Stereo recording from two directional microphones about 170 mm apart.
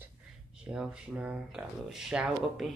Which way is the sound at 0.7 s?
5° right (ahead or behind).